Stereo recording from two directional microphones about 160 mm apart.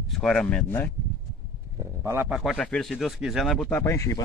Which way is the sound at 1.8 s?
15° right (ahead or behind).